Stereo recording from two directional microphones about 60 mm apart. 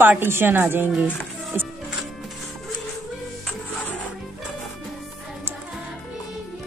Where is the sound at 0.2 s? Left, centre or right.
Right.